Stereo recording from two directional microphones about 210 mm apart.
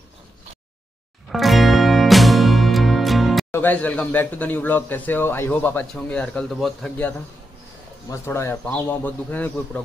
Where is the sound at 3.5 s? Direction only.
10° left (ahead or behind).